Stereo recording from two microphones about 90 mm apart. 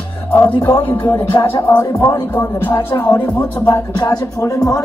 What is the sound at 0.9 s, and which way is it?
Music, 25° left (ahead or behind).